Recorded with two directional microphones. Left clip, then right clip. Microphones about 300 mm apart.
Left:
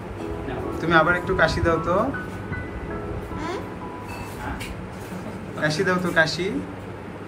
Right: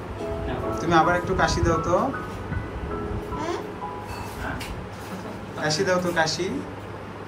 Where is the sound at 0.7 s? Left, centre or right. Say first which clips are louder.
Left 1 dB; centre.